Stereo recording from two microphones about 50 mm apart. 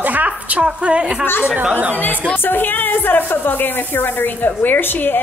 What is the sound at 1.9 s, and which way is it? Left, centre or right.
A woman's voice, left.